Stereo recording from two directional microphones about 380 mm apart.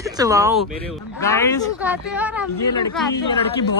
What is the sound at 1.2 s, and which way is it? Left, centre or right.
Speech, centre.